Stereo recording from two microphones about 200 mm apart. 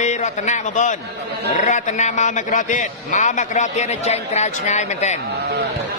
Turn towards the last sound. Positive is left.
turn(degrees=35)  # may be behind; listen again after turning